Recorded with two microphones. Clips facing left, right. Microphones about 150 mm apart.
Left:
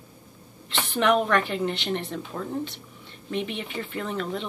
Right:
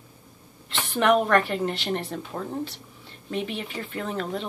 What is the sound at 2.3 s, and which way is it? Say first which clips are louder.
Speech: right 1 dB; 15° right (ahead or behind).